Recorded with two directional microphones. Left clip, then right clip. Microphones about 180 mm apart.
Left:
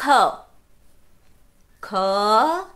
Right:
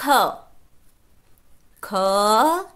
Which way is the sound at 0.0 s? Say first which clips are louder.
Left 2 dB; 20° right (ahead or behind).